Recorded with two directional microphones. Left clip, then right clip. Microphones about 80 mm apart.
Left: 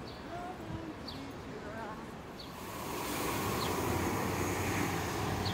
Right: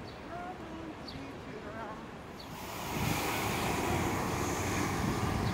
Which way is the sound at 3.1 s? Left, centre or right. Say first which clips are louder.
Right 1 dB; right.